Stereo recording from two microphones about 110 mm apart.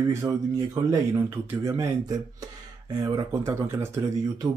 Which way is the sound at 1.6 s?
25° right (ahead or behind).